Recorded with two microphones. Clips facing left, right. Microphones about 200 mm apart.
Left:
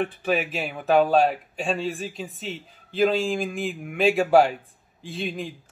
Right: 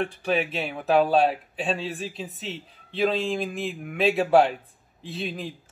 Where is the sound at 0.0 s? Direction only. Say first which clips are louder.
Left 1 dB; centre (ahead or behind).